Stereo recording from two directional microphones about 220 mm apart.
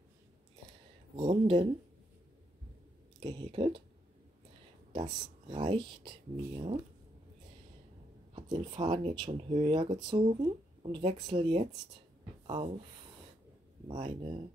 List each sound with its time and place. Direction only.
1.1 s speech: 25° right (ahead or behind)
3.2 s speech: 20° right (ahead or behind)
4.9 s speech: 20° right (ahead or behind)
8.4 s speech: 20° right (ahead or behind)
13.8 s speech: 25° right (ahead or behind)